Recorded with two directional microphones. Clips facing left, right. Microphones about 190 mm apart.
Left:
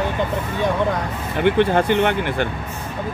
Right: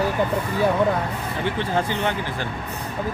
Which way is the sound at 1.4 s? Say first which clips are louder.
Left 8 dB; 65° left (ahead or behind).